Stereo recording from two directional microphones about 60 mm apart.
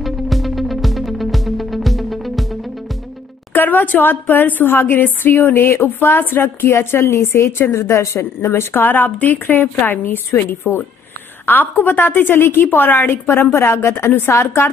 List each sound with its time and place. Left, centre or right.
0.0 s music: centre
3.5 s a woman's voice: left
7.9 s a woman's voice: left